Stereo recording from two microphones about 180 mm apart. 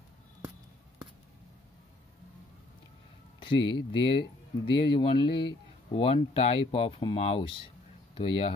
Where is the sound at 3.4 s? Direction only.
30° left (ahead or behind).